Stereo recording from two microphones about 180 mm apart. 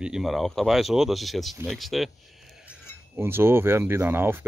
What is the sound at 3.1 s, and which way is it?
Speech, 15° right (ahead or behind).